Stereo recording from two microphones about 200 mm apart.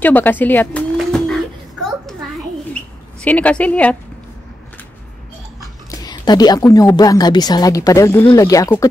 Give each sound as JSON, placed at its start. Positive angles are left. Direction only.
{"t": 0.0, "sound": "speech", "side_deg": 10}
{"t": 0.9, "sound": "a sound", "side_deg": 5}
{"t": 3.2, "sound": "speech", "side_deg": 5}
{"t": 5.9, "sound": "speech", "side_deg": 20}